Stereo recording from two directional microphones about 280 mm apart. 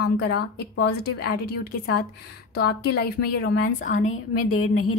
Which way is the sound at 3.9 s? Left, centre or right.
Left.